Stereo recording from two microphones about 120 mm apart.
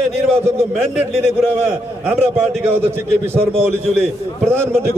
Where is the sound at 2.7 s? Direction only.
20° right (ahead or behind).